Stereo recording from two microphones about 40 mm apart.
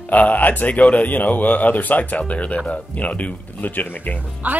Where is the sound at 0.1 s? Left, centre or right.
Left.